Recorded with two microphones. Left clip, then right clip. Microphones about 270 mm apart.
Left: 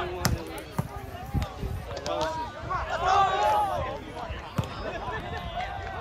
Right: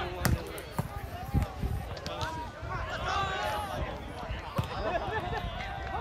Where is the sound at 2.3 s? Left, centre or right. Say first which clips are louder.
Left 7 dB; centre.